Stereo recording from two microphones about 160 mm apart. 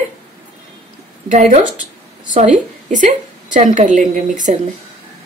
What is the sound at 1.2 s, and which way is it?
A woman's voice, 50° right (ahead or behind).